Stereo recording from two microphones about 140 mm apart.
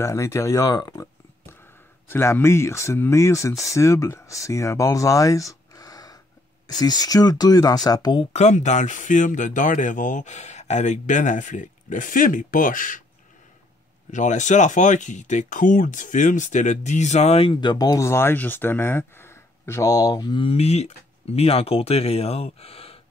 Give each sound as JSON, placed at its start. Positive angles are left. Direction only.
{"t": 0.0, "sound": "speech", "side_deg": 20}
{"t": 8.3, "sound": "speech", "side_deg": 55}
{"t": 14.1, "sound": "speech", "side_deg": 60}